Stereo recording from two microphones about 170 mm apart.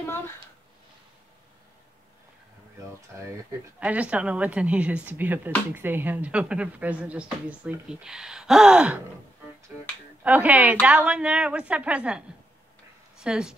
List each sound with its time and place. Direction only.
3.1 s speech: 15° right (ahead or behind)
10.2 s speech: 10° right (ahead or behind)
13.2 s speech: 5° right (ahead or behind)